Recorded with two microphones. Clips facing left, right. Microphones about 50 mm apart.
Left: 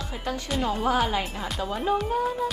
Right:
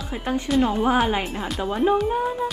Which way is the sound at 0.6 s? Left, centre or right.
Centre.